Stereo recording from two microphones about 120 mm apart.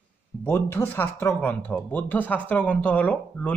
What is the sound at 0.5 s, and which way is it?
Speech, 20° left (ahead or behind).